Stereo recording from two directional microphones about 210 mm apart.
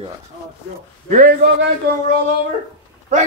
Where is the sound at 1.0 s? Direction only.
45° right (ahead or behind).